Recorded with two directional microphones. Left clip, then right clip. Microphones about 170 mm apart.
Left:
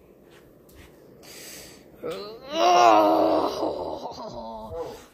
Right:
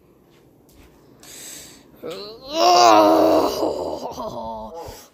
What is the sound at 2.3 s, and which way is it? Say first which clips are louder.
Wail: right 4 dB; 40° right (ahead or behind).